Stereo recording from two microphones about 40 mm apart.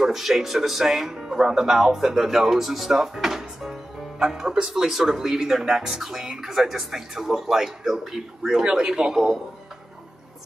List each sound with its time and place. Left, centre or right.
0.0 s speech: centre
8.8 s a man's voice: centre